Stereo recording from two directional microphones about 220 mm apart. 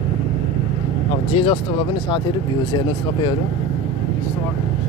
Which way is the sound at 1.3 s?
25° left (ahead or behind).